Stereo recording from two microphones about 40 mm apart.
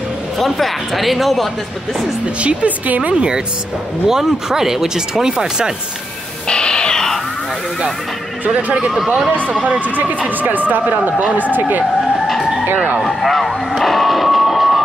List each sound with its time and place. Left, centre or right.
0.4 s speech: centre
2.4 s a woman's voice: right
4.1 s speech: centre
6.4 s bird: left
8.9 s speech: centre
9.5 s a woman's voice: right
9.9 s speech: right
13.0 s a sound: centre